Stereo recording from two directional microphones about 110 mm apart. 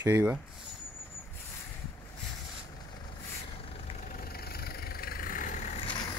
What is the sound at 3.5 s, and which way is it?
Vehicle, 60° left (ahead or behind).